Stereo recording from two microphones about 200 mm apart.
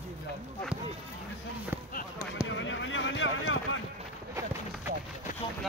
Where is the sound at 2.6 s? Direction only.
70° left (ahead or behind).